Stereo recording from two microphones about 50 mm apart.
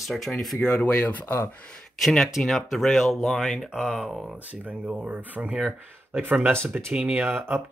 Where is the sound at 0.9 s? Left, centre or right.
Left.